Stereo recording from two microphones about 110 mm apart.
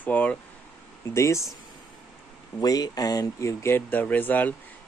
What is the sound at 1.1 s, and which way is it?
Speech, 25° left (ahead or behind).